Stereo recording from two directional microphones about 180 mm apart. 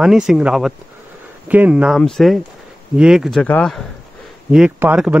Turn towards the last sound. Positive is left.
turn(degrees=-10)  # may be behind; listen again after turning